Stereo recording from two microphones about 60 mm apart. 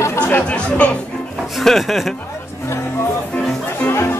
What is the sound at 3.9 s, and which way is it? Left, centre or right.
Music, left.